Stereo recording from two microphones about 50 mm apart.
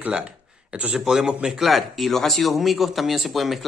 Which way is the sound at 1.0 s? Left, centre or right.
Centre.